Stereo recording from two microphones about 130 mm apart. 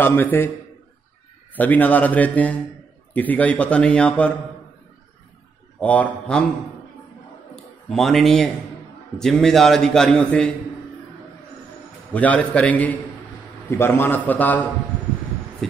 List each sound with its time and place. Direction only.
0.0 s a man's voice: 15° left (ahead or behind)
1.5 s a man's voice: 15° left (ahead or behind)
5.8 s a man's voice: 10° left (ahead or behind)
7.9 s a man's voice: centre (ahead or behind)
12.1 s a man's voice: 10° left (ahead or behind)